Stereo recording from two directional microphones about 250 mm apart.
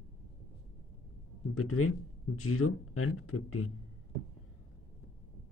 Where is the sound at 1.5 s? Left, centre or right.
Left.